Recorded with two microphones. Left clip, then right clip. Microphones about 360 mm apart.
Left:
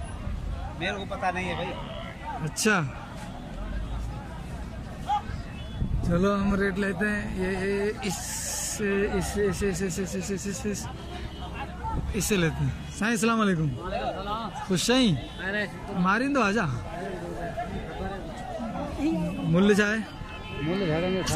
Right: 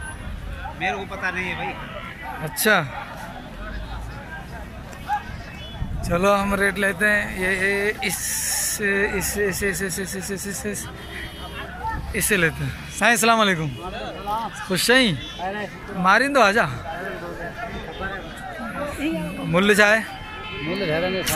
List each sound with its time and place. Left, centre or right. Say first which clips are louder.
0.7 s speech: right 5 dB; left
2.5 s speech: right 7 dB; centre
6.0 s speech: right 7 dB; centre
12.2 s speech: right 7 dB; centre
19.5 s speech: right 8 dB; centre
20.6 s speech: right 4 dB; right